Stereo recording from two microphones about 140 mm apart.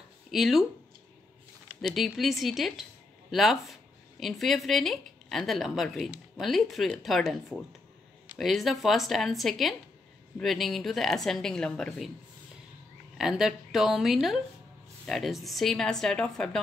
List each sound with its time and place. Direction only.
0.3 s speech: centre (ahead or behind)
1.8 s speech: centre (ahead or behind)
13.2 s speech: 5° right (ahead or behind)